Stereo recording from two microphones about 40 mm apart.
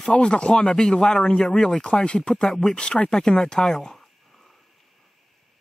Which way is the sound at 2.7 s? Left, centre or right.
Left.